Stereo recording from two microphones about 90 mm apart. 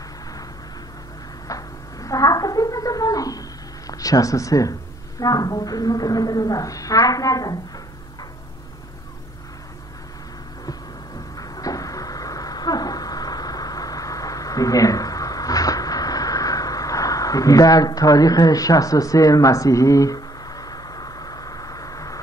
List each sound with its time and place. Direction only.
1.5 s cat: 40° left (ahead or behind)
3.9 s a woman's voice: 40° left (ahead or behind)
11.3 s a sound: 40° left (ahead or behind)